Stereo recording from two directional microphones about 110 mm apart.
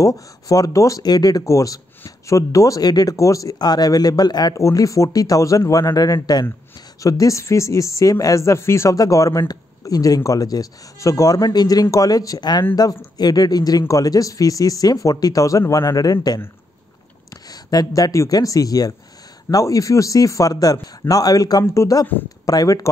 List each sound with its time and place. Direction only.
0.0 s speech: 30° left (ahead or behind)